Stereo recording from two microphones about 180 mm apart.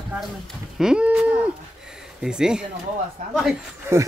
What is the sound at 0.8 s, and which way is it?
Speech, 5° right (ahead or behind).